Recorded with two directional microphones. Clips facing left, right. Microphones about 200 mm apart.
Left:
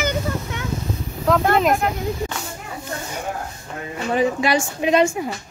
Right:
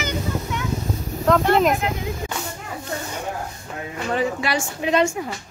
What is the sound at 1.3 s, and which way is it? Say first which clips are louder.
Speech: right 1 dB; centre (ahead or behind).